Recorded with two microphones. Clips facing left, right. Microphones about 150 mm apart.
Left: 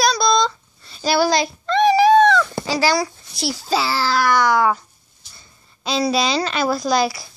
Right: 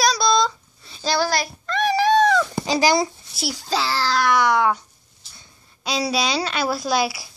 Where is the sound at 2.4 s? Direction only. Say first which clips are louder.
Even; 15° right (ahead or behind).